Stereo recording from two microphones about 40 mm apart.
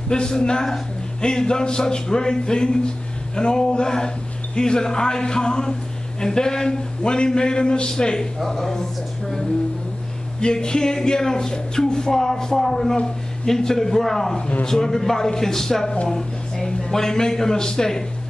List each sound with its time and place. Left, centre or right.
0.1 s a man's voice: left
8.4 s a man's voice: centre
10.4 s a man's voice: centre